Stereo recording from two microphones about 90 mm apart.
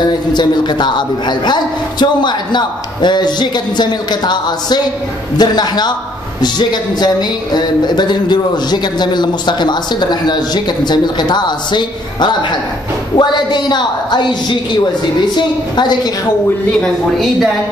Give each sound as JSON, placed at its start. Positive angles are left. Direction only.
{"t": 0.3, "sound": "a woman's voice", "side_deg": 55}
{"t": 16.8, "sound": "speech", "side_deg": 0}